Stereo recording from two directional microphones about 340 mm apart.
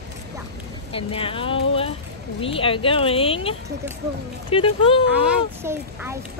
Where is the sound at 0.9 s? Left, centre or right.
Centre.